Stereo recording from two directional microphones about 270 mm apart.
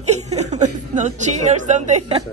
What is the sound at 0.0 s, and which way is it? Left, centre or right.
Speech, right.